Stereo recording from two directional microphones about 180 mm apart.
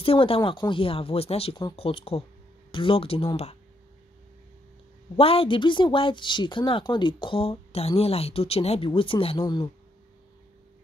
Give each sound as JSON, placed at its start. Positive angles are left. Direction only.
{"t": 0.0, "sound": "speech", "side_deg": 30}
{"t": 5.1, "sound": "a woman's voice", "side_deg": 30}